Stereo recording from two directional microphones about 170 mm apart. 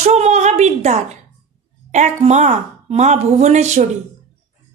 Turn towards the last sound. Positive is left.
turn(degrees=-40)  # may be behind; listen again after turning